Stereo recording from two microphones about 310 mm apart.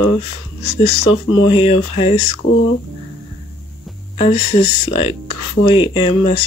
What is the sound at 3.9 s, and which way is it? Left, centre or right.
Music, centre.